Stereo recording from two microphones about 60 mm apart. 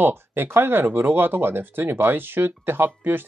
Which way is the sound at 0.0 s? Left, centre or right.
Right.